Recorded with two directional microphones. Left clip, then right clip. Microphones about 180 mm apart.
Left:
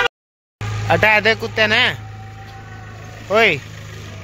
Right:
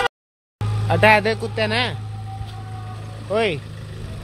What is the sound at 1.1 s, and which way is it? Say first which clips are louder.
Speech: left 5 dB; 5° right (ahead or behind).